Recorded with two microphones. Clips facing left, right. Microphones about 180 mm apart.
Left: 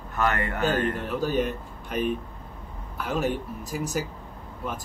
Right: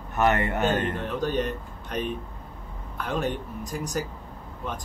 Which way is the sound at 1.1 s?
5° left (ahead or behind).